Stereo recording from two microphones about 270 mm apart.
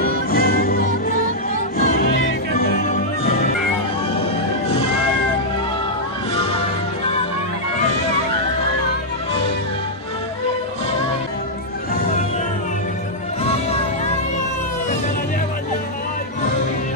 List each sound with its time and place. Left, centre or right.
0.0 s music: left
13.4 s music: left